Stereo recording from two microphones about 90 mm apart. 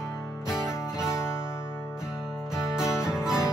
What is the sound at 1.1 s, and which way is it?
Music, 30° left (ahead or behind).